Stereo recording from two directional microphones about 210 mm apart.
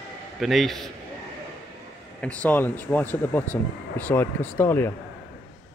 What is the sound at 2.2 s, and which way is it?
Speech, 5° left (ahead or behind).